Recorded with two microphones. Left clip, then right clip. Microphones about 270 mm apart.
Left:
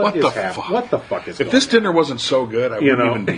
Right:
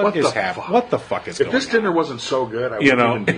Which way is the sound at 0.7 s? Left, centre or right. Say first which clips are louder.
Right 2 dB; right.